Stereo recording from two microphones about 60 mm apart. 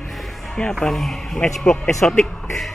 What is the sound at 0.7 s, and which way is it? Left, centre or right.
Speech, centre.